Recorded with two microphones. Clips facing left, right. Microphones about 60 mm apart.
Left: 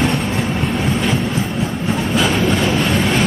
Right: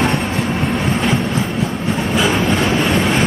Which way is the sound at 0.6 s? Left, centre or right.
Centre.